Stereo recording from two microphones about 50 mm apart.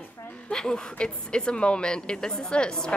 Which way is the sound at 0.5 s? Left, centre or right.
Centre.